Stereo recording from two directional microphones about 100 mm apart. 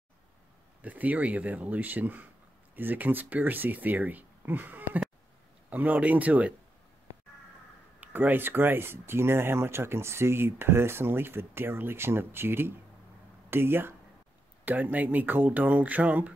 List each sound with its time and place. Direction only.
0.8 s speech: 15° right (ahead or behind)
8.0 s speech: 20° right (ahead or behind)